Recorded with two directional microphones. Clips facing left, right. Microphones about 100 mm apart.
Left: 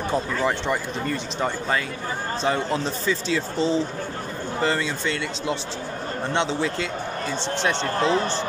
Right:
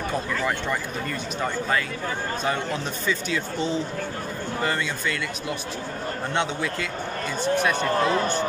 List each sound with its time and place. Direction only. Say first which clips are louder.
0.1 s speech: left 4 dB; 25° left (ahead or behind)
2.4 s speech: left 5 dB; 30° left (ahead or behind)